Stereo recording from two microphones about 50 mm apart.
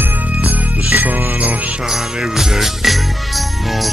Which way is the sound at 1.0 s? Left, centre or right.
Right.